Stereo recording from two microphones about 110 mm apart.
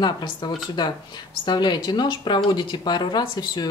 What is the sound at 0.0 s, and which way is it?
Speech, 40° left (ahead or behind).